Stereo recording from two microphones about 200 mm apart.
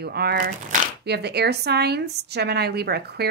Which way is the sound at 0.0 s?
50° right (ahead or behind).